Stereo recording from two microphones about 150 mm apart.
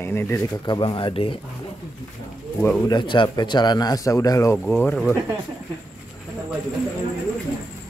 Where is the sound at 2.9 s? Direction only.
30° left (ahead or behind); by 5.1 s 10° left (ahead or behind).